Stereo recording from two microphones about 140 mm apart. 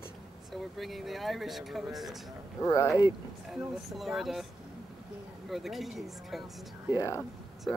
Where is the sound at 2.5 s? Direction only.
25° left (ahead or behind).